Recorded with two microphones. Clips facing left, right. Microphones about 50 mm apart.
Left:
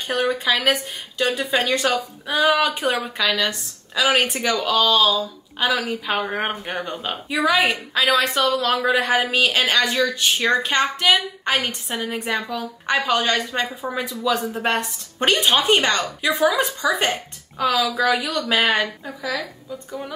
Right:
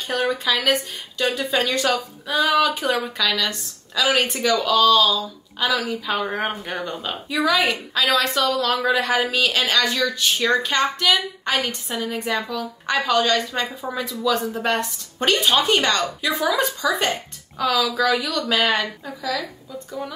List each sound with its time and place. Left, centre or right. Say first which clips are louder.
0.1 s a woman's voice: left 1 dB; left
2.7 s a woman's voice: even; left
17.6 s a woman's voice: even; left